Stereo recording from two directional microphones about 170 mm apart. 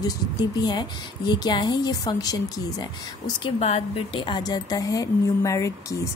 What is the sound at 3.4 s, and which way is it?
A woman's voice, 35° left (ahead or behind).